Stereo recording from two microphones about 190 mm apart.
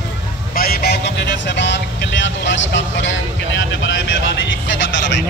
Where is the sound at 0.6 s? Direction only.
50° left (ahead or behind); by 5.2 s 70° left (ahead or behind).